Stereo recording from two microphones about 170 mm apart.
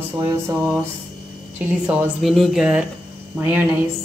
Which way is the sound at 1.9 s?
5° right (ahead or behind).